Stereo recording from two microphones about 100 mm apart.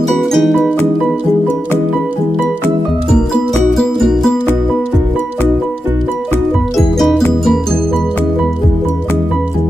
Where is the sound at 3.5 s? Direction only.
5° left (ahead or behind).